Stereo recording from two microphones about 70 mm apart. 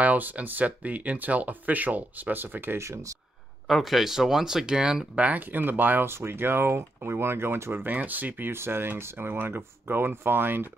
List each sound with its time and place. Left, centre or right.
0.0 s speech: right
3.6 s speech: centre; by 10.7 s right